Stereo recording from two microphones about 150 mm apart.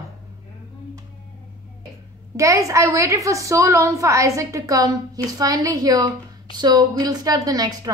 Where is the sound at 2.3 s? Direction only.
20° right (ahead or behind).